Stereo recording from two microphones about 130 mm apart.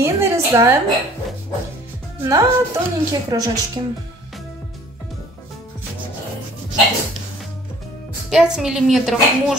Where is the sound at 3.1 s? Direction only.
30° right (ahead or behind).